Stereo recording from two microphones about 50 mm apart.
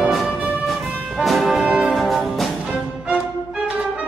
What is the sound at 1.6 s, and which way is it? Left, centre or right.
Brass instrument, centre.